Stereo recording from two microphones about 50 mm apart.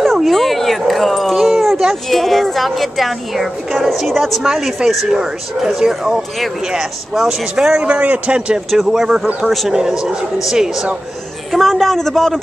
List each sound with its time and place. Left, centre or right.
0.0 s dog: centre
2.0 s a woman's voice: centre; by 8.5 s right
8.6 s a man's voice: centre
11.5 s a man's voice: centre